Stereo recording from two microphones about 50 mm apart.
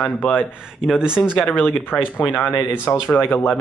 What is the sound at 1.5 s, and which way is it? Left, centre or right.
Speech, left.